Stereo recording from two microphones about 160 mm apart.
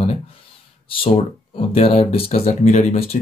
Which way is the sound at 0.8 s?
35° left (ahead or behind).